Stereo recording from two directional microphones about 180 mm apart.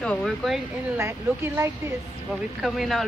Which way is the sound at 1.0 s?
15° right (ahead or behind).